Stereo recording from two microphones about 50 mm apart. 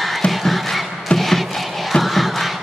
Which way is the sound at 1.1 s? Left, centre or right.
Centre.